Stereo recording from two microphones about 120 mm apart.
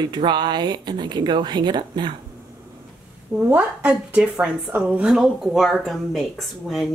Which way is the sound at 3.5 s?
10° right (ahead or behind).